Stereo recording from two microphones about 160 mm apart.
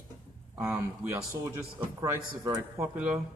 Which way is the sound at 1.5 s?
20° right (ahead or behind).